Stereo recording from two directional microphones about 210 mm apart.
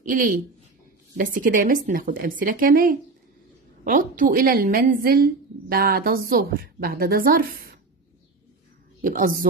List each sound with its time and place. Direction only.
0.0 s a woman's voice: 40° right (ahead or behind)
4.2 s a woman's voice: 40° right (ahead or behind)
9.0 s a woman's voice: 40° right (ahead or behind)